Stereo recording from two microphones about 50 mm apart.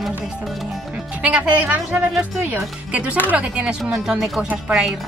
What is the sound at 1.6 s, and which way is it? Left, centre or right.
Speech, right.